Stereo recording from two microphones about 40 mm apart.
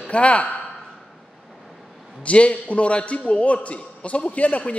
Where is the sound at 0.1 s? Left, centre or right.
Left.